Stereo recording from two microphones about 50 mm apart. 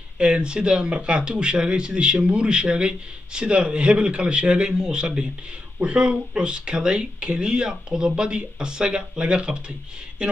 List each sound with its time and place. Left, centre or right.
0.2 s speech: right